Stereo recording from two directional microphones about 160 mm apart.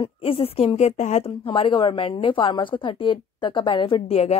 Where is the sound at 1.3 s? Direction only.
30° left (ahead or behind).